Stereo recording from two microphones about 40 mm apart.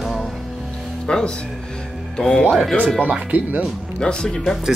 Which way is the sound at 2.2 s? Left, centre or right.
Centre.